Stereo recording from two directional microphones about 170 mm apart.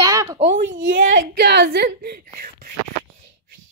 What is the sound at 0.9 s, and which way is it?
Speech, 80° right.